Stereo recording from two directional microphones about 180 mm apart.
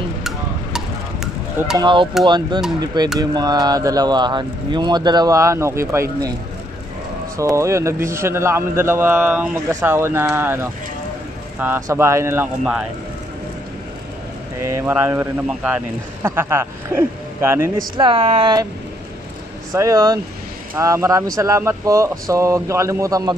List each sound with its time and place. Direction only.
0.7 s a sound: 5° right (ahead or behind)
1.8 s speech: 25° right (ahead or behind)
7.3 s speech: 15° right (ahead or behind)
14.6 s speech: 15° right (ahead or behind)
17.9 s speech: 30° right (ahead or behind)
19.7 s speech: 15° right (ahead or behind)